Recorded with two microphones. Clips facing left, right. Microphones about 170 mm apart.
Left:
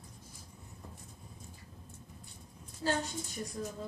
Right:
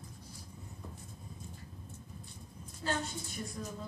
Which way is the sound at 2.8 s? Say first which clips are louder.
Left 3 dB; 30° left (ahead or behind).